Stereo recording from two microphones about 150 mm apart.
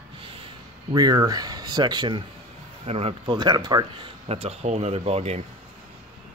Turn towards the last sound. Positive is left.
turn(degrees=-45)  # may be behind; listen again after turning